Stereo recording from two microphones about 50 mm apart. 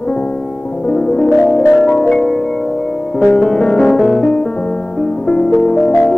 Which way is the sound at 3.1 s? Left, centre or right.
Centre.